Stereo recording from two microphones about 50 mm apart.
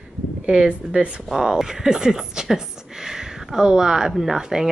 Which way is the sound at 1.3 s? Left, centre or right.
Centre.